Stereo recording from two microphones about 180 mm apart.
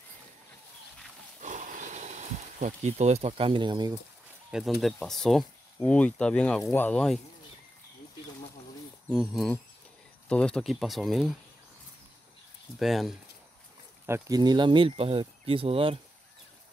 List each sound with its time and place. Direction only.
1.4 s a sound: 45° right (ahead or behind); by 4.0 s 25° right (ahead or behind)
4.5 s speech: centre (ahead or behind)
9.1 s speech: centre (ahead or behind)
12.7 s speech: centre (ahead or behind)
14.0 s speech: 15° right (ahead or behind); by 16.0 s 30° right (ahead or behind)